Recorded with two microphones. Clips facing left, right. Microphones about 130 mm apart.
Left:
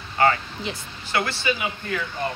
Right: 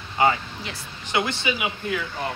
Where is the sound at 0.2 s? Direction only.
15° right (ahead or behind).